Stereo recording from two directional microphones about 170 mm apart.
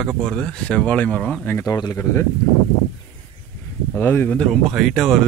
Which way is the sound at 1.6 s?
20° left (ahead or behind).